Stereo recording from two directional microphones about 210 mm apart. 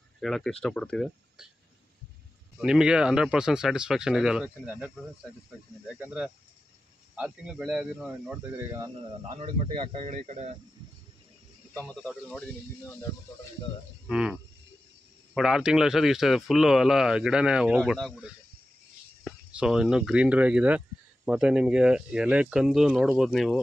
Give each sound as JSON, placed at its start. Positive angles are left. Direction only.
{"t": 0.2, "sound": "speech", "side_deg": 0}
{"t": 2.5, "sound": "speech", "side_deg": -5}
{"t": 9.4, "sound": "speech", "side_deg": -30}
{"t": 11.7, "sound": "speech", "side_deg": 5}
{"t": 14.0, "sound": "cricket", "side_deg": -5}
{"t": 15.3, "sound": "speech", "side_deg": -5}